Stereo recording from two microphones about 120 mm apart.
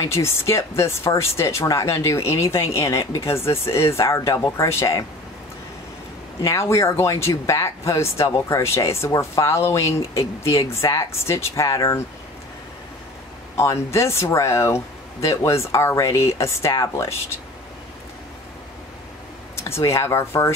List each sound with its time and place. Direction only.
0.1 s speech: 25° left (ahead or behind)
6.4 s speech: 25° left (ahead or behind)
13.6 s speech: 25° left (ahead or behind)
19.5 s speech: 25° left (ahead or behind)